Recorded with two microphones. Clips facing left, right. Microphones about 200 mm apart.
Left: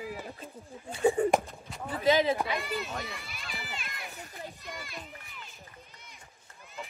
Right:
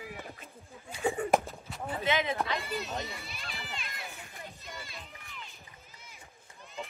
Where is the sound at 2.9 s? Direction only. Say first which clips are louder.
Right 1 dB; 20° right (ahead or behind).